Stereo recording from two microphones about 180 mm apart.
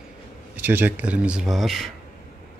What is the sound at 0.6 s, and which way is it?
Speech, 10° right (ahead or behind).